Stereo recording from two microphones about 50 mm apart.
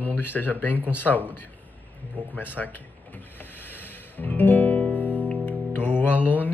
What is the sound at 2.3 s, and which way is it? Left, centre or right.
Speech, left.